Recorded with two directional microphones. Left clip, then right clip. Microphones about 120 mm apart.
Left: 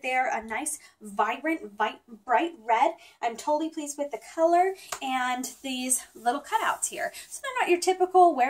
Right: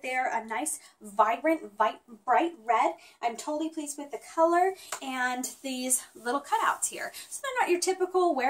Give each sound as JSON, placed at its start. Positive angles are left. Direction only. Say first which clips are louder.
{"t": 0.0, "sound": "a woman's voice", "louder": "left 3 dB", "side_deg": -15}